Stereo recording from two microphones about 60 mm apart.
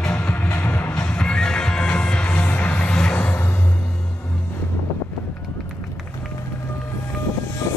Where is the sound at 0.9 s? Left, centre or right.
Centre.